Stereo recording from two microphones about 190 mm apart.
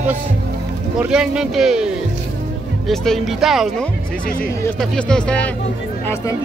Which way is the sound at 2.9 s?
Centre (ahead or behind).